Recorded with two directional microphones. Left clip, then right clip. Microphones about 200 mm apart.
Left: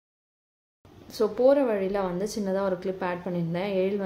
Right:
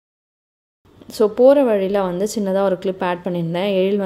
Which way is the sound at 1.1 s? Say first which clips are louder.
Right 9 dB; 35° right (ahead or behind).